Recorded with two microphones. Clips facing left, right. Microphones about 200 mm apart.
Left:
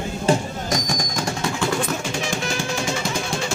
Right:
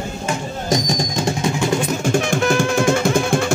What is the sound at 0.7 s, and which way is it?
Music, 25° right (ahead or behind).